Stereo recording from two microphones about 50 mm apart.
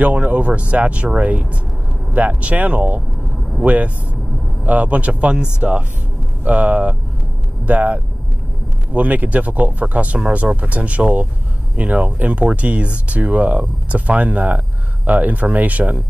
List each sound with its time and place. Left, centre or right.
0.0 s speech: right